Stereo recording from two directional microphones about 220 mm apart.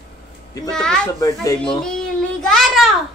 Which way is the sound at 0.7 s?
5° left (ahead or behind).